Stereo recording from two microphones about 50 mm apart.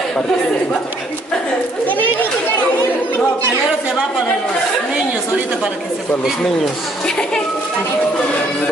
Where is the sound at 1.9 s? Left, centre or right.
Left.